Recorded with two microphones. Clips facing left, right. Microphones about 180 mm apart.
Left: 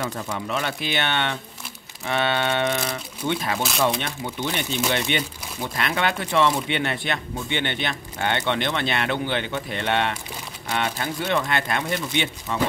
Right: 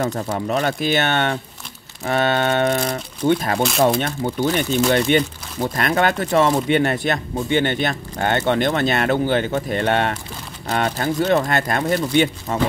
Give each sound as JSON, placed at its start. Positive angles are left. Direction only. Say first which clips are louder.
{"t": 0.0, "sound": "speech", "louder": "right 6 dB", "side_deg": -40}